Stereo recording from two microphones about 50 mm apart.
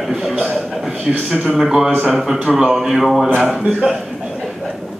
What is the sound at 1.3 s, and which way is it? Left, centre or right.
A man's voice, centre.